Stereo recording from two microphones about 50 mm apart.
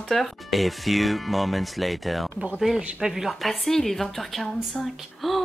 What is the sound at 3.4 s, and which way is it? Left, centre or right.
Speech, centre.